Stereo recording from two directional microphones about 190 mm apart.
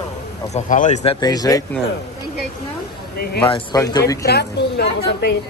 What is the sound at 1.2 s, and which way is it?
Speech, 20° left (ahead or behind).